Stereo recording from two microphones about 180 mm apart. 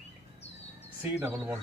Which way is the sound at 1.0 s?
10° right (ahead or behind).